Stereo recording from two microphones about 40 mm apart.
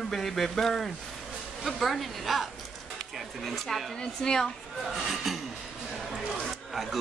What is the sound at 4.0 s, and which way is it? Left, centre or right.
Speech, centre.